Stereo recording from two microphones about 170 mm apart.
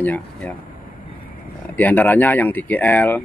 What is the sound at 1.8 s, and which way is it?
Speech, 10° left (ahead or behind).